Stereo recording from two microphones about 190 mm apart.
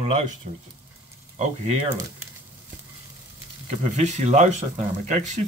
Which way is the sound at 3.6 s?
35° right (ahead or behind).